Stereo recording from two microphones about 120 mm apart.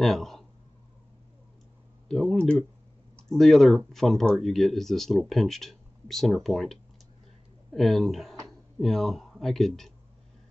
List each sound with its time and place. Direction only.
0.0 s speech: centre (ahead or behind)
2.0 s speech: 5° left (ahead or behind)